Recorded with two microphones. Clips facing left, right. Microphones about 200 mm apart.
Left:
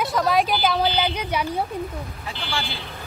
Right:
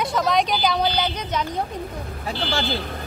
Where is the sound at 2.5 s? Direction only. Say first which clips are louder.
Right 4 dB; 40° right (ahead or behind).